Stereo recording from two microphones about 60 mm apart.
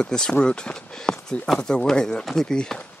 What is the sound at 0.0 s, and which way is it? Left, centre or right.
Speech, centre.